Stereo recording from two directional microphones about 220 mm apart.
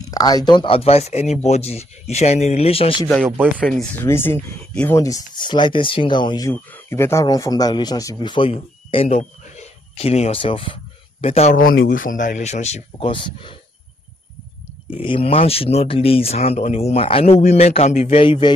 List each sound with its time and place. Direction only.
0.1 s speech: 15° left (ahead or behind)
3.5 s speech: 5° left (ahead or behind); by 13.6 s 25° left (ahead or behind)
15.0 s speech: 25° left (ahead or behind)